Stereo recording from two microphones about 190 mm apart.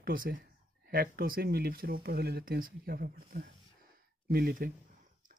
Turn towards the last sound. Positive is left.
turn(degrees=-50)  # may be behind; listen again after turning